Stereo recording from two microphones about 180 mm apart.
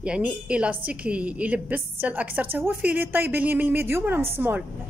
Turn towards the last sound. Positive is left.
turn(degrees=-10)  # may be behind; listen again after turning